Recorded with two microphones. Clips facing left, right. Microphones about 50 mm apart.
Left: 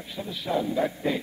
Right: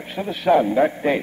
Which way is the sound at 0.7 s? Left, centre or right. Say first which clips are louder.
Right 8 dB; right.